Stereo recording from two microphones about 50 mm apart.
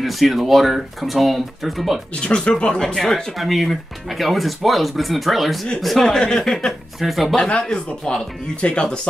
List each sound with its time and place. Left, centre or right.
0.0 s speech: centre
2.2 s speech: centre
3.3 s speech: centre
7.0 s speech: centre
7.3 s speech: left